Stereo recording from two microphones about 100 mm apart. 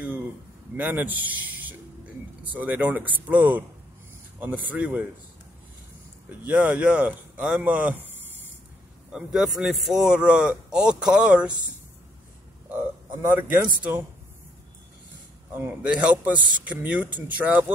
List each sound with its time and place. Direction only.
0.7 s a man's voice: 15° right (ahead or behind)
6.4 s speech: 15° right (ahead or behind)
9.1 s a man's voice: 5° right (ahead or behind)
13.3 s a man's voice: 20° right (ahead or behind)
15.5 s a man's voice: 15° right (ahead or behind)